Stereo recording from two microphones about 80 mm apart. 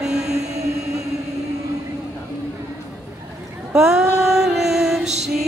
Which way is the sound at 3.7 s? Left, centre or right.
Centre.